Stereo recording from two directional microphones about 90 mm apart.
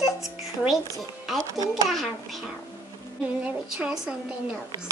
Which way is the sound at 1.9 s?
Centre (ahead or behind).